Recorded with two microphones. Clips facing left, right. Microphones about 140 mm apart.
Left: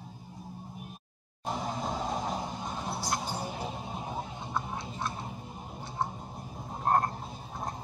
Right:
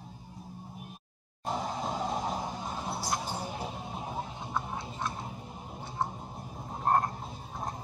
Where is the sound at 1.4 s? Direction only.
Centre (ahead or behind).